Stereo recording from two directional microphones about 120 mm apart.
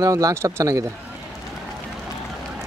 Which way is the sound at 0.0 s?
25° right (ahead or behind).